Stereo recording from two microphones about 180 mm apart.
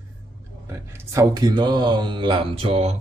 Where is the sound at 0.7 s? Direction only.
15° right (ahead or behind).